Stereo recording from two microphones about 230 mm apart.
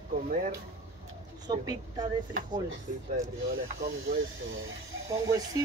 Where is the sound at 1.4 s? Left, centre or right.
Centre.